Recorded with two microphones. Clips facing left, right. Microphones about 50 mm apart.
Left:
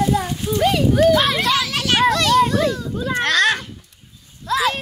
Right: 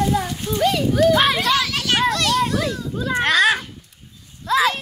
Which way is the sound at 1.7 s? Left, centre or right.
Left.